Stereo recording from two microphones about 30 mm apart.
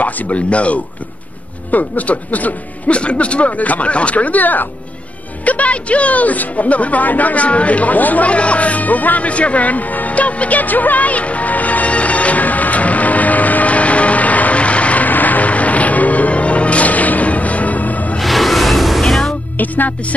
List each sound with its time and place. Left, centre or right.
0.0 s speech: left
1.7 s speech: left
2.9 s speech: left
3.5 s speech: left
3.9 s speech: left
5.4 s speech: left
7.4 s speech: left
8.3 s speech: left
9.3 s speech: left
10.6 s music: left
15.0 s music: left
18.2 s music: centre
19.5 s music: left